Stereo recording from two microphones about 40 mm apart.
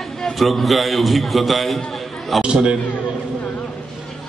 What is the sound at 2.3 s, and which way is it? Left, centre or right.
Speech, centre.